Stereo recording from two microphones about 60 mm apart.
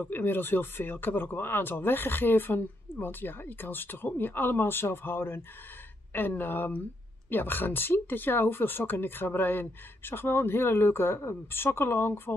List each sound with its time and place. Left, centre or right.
0.0 s speech: left